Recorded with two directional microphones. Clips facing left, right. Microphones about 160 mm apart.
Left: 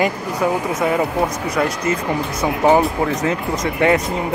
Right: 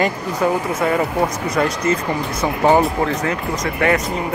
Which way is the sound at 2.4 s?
Centre (ahead or behind).